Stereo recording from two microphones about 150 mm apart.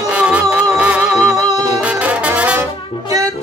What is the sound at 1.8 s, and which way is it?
Brass instrument, 10° right (ahead or behind).